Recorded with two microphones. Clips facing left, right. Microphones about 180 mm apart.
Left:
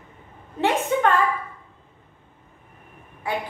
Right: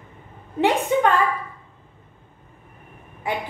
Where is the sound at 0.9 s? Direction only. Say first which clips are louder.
Right 2 dB; 15° right (ahead or behind).